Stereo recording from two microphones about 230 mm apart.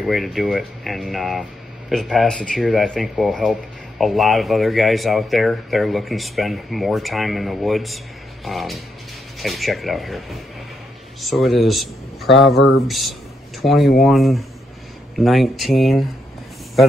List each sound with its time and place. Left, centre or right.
0.0 s speech: centre
12.5 s speech: left
12.8 s speech: centre
13.6 s speech: left
14.0 s speech: centre